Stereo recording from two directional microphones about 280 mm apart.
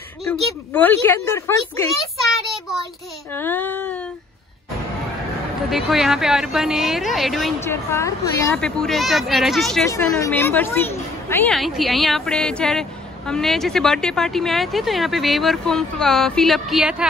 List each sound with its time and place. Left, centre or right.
0.3 s speech: centre
5.7 s speech: centre